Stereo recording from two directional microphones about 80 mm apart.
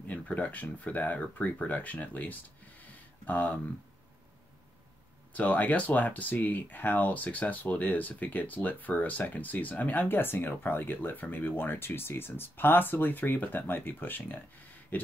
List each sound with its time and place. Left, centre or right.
0.1 s speech: centre
2.8 s a sound: left
5.3 s speech: centre